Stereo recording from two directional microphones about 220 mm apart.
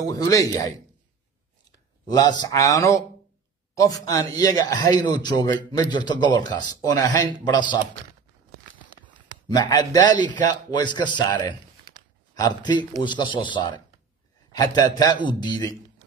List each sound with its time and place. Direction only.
0.0 s a man's voice: 15° left (ahead or behind)
2.0 s a man's voice: 20° left (ahead or behind)
9.5 s a man's voice: 20° left (ahead or behind)